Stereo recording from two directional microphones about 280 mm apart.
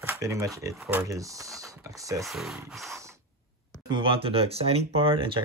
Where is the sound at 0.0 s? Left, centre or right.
Centre.